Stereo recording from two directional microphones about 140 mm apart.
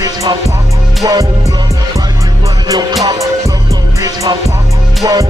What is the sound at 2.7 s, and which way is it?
Music, 30° right (ahead or behind).